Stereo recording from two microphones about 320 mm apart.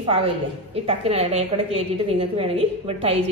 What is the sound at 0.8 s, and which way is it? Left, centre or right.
A woman's voice, centre.